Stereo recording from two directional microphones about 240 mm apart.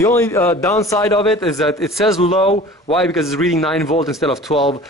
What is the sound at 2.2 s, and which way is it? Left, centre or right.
Speech, left.